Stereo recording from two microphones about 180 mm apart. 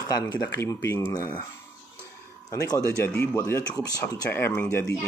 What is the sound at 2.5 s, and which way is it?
Speech, 15° left (ahead or behind).